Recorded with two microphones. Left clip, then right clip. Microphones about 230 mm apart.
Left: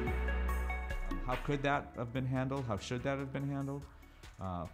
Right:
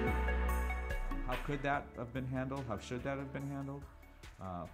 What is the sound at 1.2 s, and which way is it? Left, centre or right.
Speech, left.